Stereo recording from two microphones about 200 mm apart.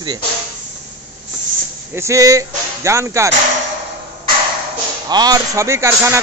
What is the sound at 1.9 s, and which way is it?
A man's voice, 15° right (ahead or behind).